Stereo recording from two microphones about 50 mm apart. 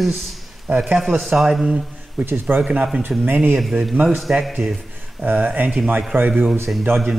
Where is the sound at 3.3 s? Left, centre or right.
Right.